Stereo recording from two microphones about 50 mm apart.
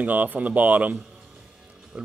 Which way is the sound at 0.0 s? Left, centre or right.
Right.